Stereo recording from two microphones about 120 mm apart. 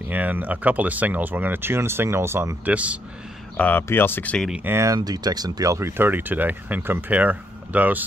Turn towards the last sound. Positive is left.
turn(degrees=-15)  # may be behind; listen again after turning